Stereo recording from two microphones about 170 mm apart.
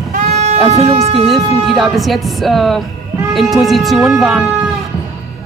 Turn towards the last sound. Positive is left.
turn(degrees=0)  # may be behind; listen again after turning